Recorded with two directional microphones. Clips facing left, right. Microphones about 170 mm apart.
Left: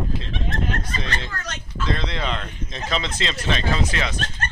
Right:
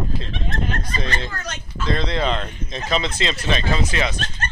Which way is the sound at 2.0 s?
35° right (ahead or behind).